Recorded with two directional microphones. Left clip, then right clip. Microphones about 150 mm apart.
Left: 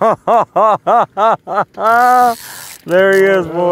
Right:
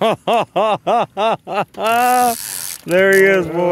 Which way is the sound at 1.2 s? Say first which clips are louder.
Left 5 dB; 5° right (ahead or behind).